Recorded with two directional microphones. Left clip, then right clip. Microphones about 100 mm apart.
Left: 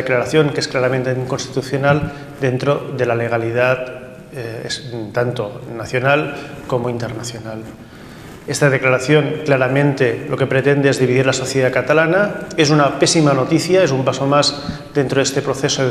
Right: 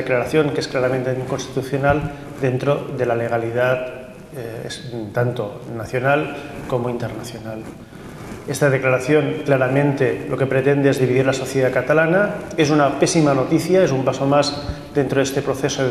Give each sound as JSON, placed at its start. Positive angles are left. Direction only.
{"t": 0.0, "sound": "a man's voice", "side_deg": 30}
{"t": 8.5, "sound": "a man's voice", "side_deg": 25}